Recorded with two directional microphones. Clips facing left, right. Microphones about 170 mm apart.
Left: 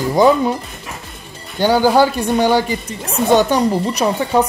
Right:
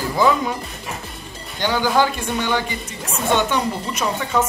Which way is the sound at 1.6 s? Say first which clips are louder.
Left 6 dB; 35° left (ahead or behind).